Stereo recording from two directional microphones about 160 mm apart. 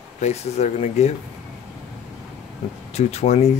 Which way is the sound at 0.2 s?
45° left (ahead or behind).